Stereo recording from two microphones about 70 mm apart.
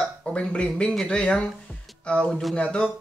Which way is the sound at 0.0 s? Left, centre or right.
Centre.